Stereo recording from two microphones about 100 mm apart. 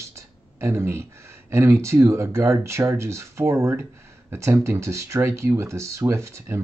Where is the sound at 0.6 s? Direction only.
25° right (ahead or behind).